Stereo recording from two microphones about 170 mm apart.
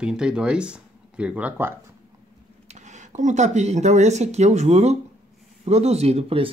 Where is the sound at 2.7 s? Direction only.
45° right (ahead or behind).